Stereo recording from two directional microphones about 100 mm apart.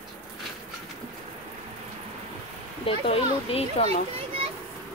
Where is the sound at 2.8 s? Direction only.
75° left (ahead or behind).